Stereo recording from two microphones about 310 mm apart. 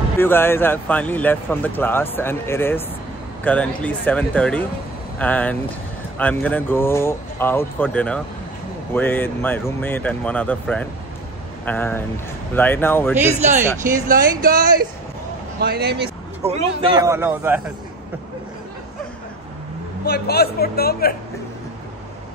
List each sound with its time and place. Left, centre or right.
0.2 s speech: centre
13.2 s speech: right
16.5 s speech: centre
20.1 s a man's voice: left